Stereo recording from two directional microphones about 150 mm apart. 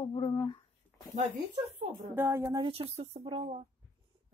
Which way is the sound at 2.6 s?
40° right (ahead or behind).